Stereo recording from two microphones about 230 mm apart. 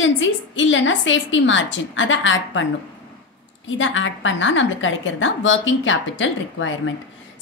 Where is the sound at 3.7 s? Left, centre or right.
Left.